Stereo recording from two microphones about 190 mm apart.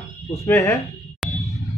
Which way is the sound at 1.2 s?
5° left (ahead or behind).